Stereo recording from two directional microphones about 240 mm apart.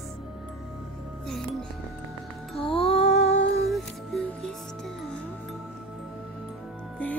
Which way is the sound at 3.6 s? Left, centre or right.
Centre.